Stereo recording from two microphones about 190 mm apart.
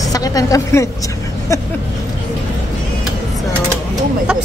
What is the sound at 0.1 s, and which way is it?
Speech, 20° left (ahead or behind).